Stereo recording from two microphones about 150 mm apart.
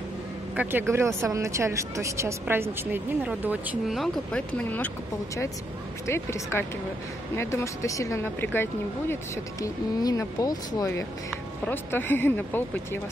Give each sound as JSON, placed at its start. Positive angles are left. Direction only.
{"t": 0.6, "sound": "a man's voice", "side_deg": -15}
{"t": 3.9, "sound": "speech", "side_deg": 5}